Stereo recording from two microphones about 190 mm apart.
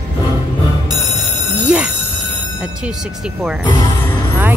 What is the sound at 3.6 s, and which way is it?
Speech, 20° left (ahead or behind).